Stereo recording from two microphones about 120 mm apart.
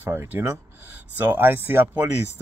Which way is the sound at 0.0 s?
20° right (ahead or behind).